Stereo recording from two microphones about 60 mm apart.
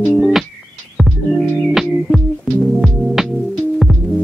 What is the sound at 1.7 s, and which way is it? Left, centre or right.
Music, centre.